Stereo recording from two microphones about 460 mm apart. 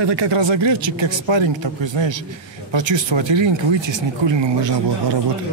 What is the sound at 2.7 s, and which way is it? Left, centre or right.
Speech, right.